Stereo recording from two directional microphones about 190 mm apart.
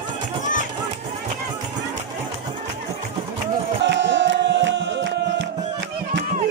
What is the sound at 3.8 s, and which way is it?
Music, 70° right (ahead or behind).